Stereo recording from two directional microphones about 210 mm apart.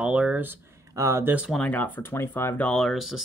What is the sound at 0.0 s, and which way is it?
Speech, 5° right (ahead or behind).